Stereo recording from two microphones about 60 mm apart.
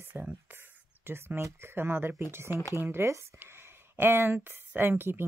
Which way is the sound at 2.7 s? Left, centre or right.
Right.